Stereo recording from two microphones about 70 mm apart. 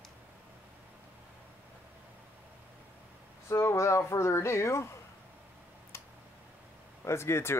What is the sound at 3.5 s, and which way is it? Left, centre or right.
Speech, left.